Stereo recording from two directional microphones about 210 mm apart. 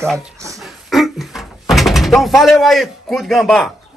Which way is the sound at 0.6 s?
Centre (ahead or behind).